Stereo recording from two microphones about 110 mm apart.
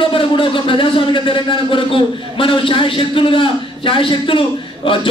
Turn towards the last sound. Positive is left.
turn(degrees=50)  # may be behind; listen again after turning